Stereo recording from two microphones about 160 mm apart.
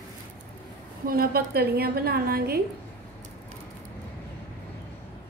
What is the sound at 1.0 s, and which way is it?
A woman's voice, 70° right (ahead or behind).